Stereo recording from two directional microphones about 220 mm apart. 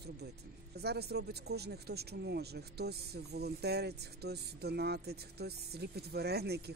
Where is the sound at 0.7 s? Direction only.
45° right (ahead or behind).